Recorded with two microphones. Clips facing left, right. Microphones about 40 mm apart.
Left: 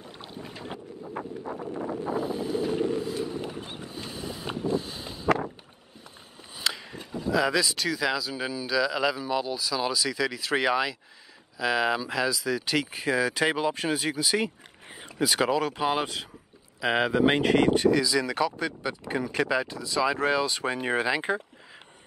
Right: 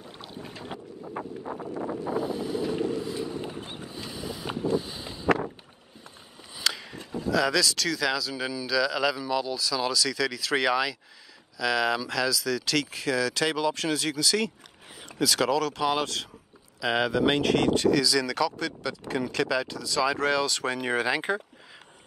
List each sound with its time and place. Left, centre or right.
0.6 s wind noise: centre
3.3 s boat: centre
4.7 s wind noise: centre
6.5 s a sound: centre
7.2 s speech: centre